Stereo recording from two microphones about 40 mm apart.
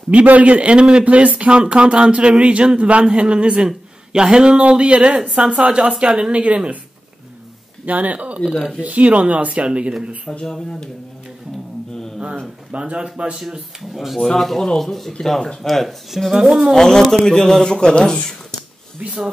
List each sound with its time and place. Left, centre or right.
0.1 s a man's voice: right
1.0 s speech: right
6.3 s a man's voice: right
7.8 s a man's voice: right
9.7 s speech: right
10.4 s speech: centre
12.7 s speech: right
13.9 s speech: centre
16.7 s speech: centre
17.6 s speech: left